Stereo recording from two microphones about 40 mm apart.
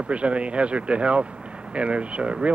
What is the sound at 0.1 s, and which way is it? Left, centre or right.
Speech, right.